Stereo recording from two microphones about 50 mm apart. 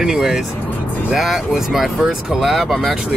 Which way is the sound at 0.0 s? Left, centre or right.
Centre.